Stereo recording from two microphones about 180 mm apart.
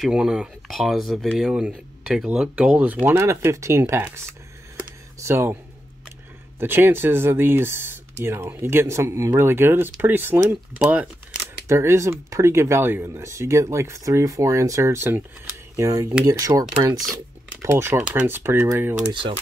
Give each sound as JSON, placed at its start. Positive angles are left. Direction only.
{"t": 0.0, "sound": "speech", "side_deg": -5}
{"t": 5.2, "sound": "speech", "side_deg": -15}
{"t": 6.6, "sound": "speech", "side_deg": -10}